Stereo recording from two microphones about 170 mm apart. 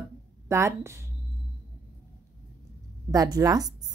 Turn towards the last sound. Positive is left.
turn(degrees=-20)  # may be behind; listen again after turning